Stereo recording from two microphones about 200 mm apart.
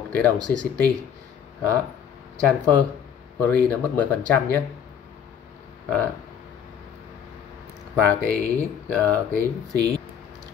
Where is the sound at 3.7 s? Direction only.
5° left (ahead or behind).